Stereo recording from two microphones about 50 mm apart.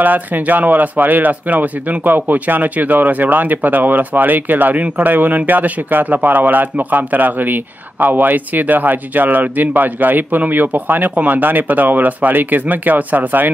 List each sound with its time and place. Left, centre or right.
0.0 s speech: right